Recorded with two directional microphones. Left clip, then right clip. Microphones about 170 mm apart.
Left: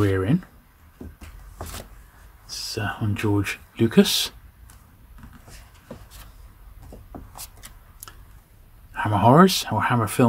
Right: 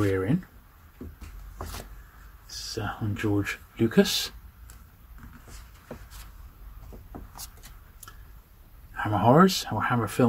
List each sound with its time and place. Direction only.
0.0 s a sound: 50° left (ahead or behind)
2.4 s speech: 40° left (ahead or behind)
8.9 s speech: 40° left (ahead or behind)